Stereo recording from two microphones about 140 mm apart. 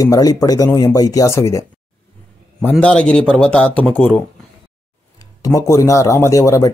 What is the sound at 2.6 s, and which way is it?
Speech, 10° left (ahead or behind).